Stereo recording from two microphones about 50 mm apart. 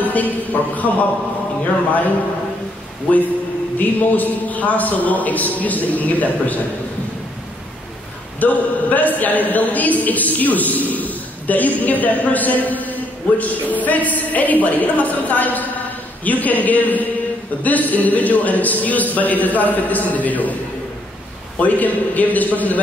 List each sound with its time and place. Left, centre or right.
0.1 s a man's voice: left
3.7 s a man's voice: left
8.4 s a man's voice: left
21.5 s a man's voice: left